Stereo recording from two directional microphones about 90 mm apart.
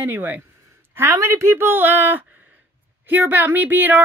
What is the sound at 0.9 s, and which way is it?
Speech, 30° right (ahead or behind).